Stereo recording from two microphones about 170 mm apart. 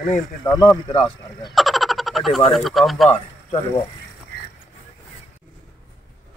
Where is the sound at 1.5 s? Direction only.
Centre (ahead or behind).